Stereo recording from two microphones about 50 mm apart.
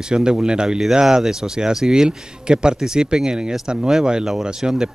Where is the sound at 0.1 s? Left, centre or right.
Centre.